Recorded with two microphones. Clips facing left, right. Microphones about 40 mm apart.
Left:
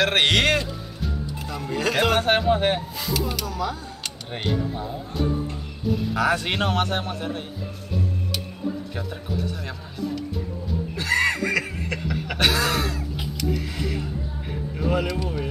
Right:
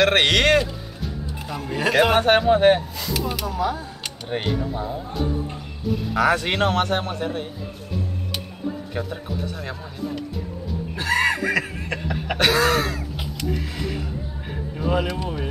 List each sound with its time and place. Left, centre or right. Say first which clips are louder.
0.0 s a man's voice: right 2 dB; centre
1.5 s speech: right 3 dB; centre
3.0 s a sound: even; centre
3.3 s a man's voice: right 3 dB; centre
8.9 s speech: right 2 dB; centre
11.0 s a sound: right 1 dB; centre
12.4 s throat clearing: right 4 dB; centre
14.9 s speech: right 1 dB; centre